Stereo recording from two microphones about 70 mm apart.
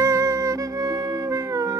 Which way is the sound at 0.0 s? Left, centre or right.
Right.